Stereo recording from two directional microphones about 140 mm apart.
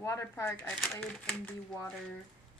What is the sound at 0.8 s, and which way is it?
Speech, 5° left (ahead or behind).